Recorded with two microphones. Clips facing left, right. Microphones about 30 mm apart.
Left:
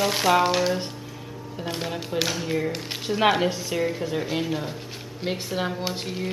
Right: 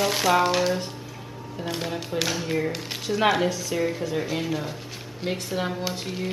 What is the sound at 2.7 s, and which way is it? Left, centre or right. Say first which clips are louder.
Speech: even; centre.